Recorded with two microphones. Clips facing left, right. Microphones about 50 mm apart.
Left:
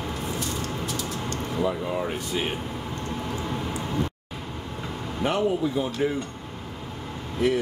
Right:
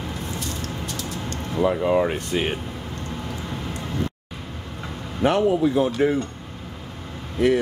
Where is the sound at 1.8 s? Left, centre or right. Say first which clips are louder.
Right 7 dB; right.